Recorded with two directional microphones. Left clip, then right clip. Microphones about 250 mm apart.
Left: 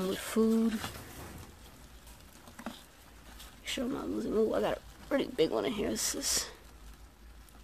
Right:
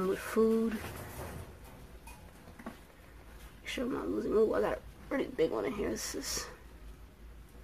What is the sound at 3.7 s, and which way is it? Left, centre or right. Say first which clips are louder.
Speech: right 1 dB; left.